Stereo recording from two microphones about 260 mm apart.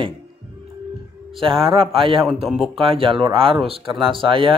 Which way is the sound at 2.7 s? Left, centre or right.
Right.